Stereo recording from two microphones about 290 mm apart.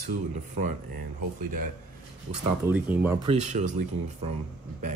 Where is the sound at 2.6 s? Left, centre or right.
Centre.